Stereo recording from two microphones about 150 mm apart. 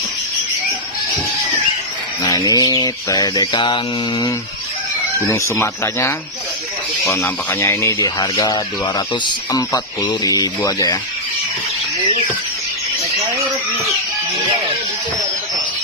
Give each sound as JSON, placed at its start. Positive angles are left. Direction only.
{"t": 2.2, "sound": "speech", "side_deg": 25}